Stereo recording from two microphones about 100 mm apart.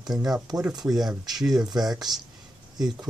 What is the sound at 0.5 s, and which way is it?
Speech, 35° right (ahead or behind).